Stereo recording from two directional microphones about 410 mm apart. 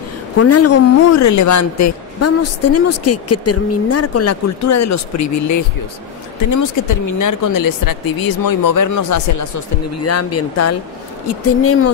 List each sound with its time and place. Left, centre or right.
0.4 s speech: left